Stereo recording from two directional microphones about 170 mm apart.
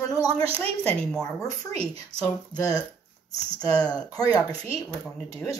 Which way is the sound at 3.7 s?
5° left (ahead or behind).